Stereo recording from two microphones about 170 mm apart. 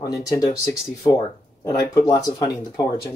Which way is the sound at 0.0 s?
20° left (ahead or behind).